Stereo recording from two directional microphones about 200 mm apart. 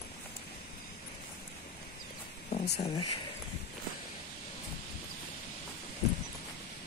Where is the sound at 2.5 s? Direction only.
30° left (ahead or behind).